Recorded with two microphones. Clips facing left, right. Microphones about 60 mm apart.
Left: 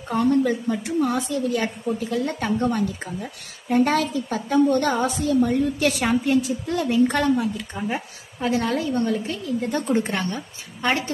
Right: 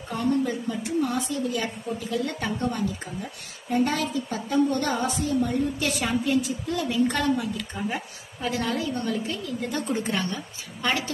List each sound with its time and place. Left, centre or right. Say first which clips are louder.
0.1 s a woman's voice: left 5 dB; left
7.9 s a woman's voice: left 3 dB; left
8.6 s a woman's voice: left 5 dB; left